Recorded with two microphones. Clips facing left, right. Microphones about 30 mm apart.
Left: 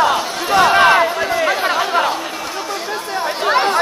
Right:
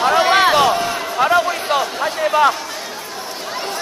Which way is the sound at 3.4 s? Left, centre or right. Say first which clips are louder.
Left 11 dB; left.